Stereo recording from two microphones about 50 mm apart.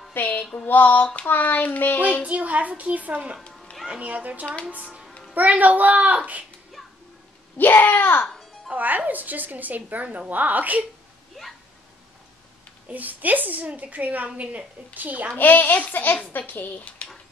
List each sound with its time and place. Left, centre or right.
0.1 s music: left
0.7 s a child's voice: left
2.2 s a woman's voice: right
7.5 s a child's voice: left
8.7 s a woman's voice: right
12.8 s a woman's voice: right
15.3 s a child's voice: left